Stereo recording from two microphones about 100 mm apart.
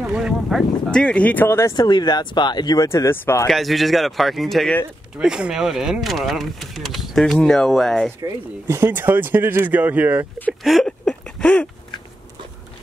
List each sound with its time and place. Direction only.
0.0 s speech: 5° right (ahead or behind)
0.9 s speech: 10° left (ahead or behind)
1.8 s speech: 45° left (ahead or behind)
2.9 s speech: 25° left (ahead or behind)
3.4 s speech: centre (ahead or behind)
8.2 s speech: 25° right (ahead or behind)
10.6 s a sound: centre (ahead or behind)